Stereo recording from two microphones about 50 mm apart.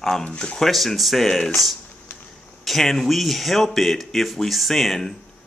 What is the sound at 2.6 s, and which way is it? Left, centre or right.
Speech, centre.